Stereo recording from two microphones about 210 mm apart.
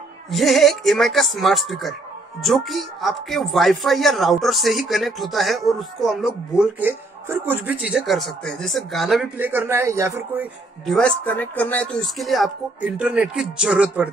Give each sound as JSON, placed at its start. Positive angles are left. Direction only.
{"t": 0.3, "sound": "speech", "side_deg": 0}
{"t": 11.0, "sound": "speech", "side_deg": 5}